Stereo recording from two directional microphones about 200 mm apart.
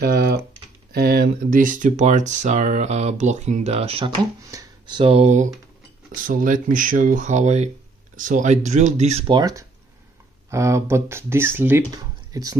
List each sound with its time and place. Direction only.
0.0 s typing: 50° right (ahead or behind)
0.9 s speech: 50° right (ahead or behind); by 4.1 s 30° right (ahead or behind)
4.5 s speech: 20° right (ahead or behind)
9.3 s speech: 20° right (ahead or behind)
12.0 s a sound: 20° right (ahead or behind)